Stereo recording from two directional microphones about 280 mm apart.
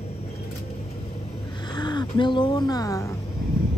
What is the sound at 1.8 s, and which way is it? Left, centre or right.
Speech, centre.